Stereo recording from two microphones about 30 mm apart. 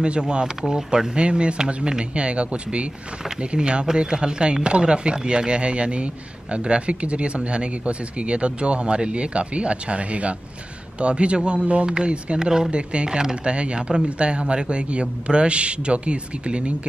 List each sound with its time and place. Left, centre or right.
0.0 s speech: right
0.6 s speech: centre
1.1 s speech: right
12.4 s speech: right
12.7 s speech: right